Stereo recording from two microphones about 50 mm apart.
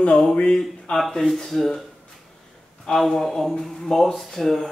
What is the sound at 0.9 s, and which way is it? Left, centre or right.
Speech, centre.